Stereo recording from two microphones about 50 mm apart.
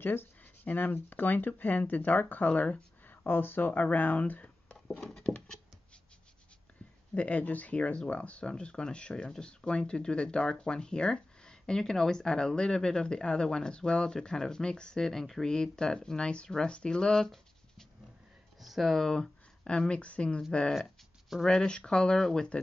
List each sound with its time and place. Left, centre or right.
0.0 s speech: left
3.3 s speech: left
5.0 s patter: centre
7.2 s speech: left
21.5 s speech: centre